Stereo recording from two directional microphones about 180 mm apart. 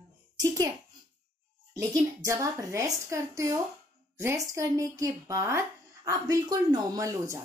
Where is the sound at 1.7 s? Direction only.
15° right (ahead or behind).